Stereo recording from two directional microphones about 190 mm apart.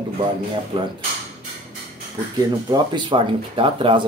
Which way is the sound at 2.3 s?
20° right (ahead or behind).